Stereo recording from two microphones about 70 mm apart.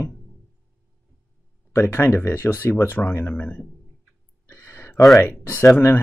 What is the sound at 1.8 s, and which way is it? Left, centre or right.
Speech, left.